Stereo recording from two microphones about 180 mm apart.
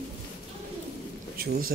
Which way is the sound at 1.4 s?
55° right (ahead or behind).